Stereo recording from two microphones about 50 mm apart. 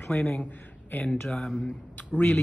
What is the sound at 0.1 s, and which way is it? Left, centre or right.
Speech, left.